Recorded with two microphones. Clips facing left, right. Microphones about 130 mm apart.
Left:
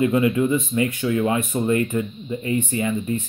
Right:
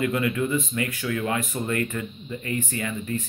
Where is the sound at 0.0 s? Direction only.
25° left (ahead or behind).